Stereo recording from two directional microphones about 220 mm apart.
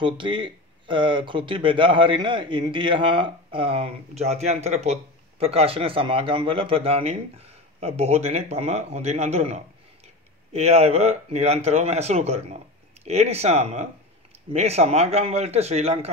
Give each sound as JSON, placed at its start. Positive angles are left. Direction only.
{"t": 0.0, "sound": "speech", "side_deg": -20}